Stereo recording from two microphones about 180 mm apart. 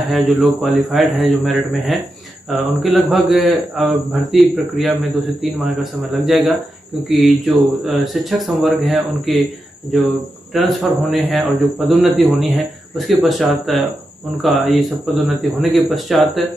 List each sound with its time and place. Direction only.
0.1 s speech: centre (ahead or behind)
10.5 s speech: centre (ahead or behind)